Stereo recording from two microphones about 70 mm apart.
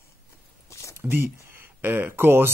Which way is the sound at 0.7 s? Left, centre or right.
Left.